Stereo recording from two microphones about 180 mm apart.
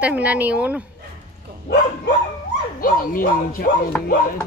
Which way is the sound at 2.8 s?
50° left (ahead or behind).